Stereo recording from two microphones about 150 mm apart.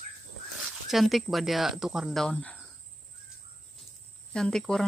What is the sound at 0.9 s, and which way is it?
Speech, centre (ahead or behind).